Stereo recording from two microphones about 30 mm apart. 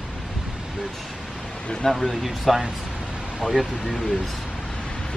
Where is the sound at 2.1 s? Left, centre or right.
Centre.